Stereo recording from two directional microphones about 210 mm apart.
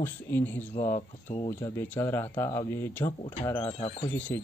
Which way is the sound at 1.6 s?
10° left (ahead or behind).